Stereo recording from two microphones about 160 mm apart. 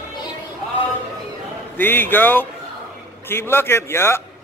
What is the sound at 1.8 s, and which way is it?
A man's voice, 10° left (ahead or behind).